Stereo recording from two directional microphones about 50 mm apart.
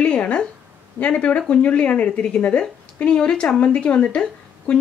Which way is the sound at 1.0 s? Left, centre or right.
Left.